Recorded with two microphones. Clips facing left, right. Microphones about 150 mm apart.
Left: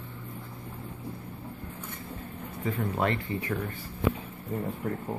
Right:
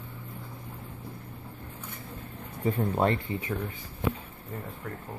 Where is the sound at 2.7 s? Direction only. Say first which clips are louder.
Right 3 dB; 30° right (ahead or behind).